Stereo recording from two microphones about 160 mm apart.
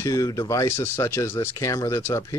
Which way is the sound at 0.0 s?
20° left (ahead or behind).